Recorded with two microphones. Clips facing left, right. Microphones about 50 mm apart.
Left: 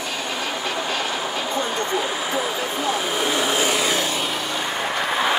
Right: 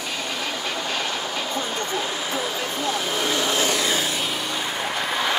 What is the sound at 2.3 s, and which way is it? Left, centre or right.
Vehicle, centre.